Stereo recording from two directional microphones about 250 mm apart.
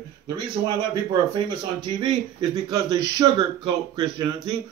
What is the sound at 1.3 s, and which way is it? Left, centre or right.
Speech, centre.